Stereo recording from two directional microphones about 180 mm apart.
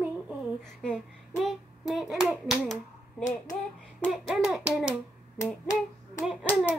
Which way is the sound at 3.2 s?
45° left (ahead or behind).